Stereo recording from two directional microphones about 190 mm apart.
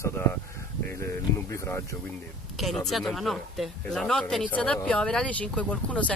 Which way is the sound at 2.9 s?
Centre (ahead or behind).